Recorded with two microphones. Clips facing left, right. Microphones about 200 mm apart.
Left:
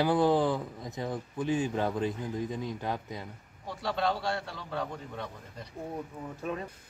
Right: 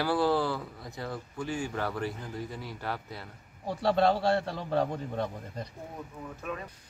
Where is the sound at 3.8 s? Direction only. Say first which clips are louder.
Right 6 dB; 35° right (ahead or behind).